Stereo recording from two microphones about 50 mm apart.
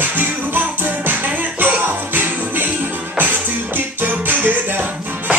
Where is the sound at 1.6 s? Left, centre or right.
Right.